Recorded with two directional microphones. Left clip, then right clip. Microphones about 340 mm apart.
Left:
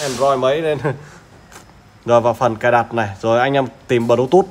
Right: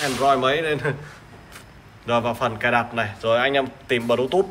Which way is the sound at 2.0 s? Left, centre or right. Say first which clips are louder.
Left 8 dB; left.